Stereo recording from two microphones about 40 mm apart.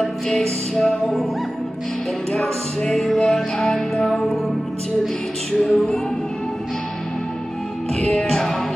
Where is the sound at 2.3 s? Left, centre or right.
Centre.